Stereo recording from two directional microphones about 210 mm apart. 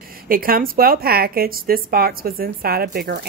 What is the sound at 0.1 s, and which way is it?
A woman's voice, 45° right (ahead or behind).